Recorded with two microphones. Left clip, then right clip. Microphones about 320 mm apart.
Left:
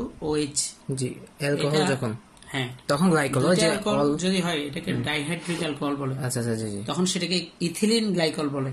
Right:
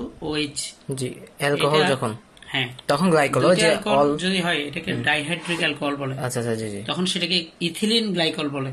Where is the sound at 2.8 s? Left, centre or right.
Centre.